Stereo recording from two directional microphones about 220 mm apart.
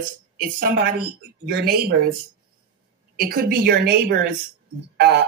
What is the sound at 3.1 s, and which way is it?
A woman's voice, 45° right (ahead or behind).